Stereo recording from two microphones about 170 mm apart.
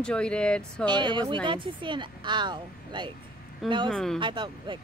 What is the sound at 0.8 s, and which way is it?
Speech, 25° right (ahead or behind).